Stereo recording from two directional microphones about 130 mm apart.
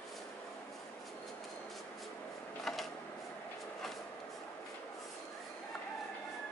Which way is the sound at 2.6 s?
Centre (ahead or behind).